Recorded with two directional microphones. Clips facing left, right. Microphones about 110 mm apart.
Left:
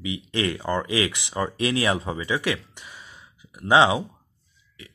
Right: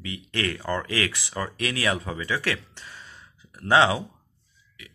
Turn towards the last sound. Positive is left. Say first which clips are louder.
# left 2 dB
turn(degrees=20)  # may be behind; listen again after turning